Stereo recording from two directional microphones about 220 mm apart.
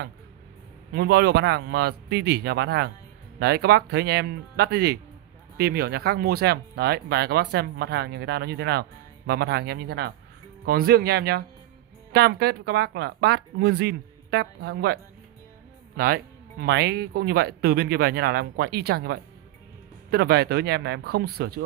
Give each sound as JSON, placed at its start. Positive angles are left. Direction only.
{"t": 0.9, "sound": "speech", "side_deg": -50}
{"t": 16.6, "sound": "speech", "side_deg": -50}